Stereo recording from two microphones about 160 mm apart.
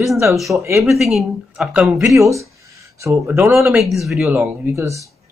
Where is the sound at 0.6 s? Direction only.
15° right (ahead or behind).